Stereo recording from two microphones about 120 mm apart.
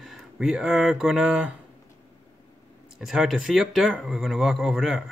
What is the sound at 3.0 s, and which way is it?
Speech, 5° right (ahead or behind).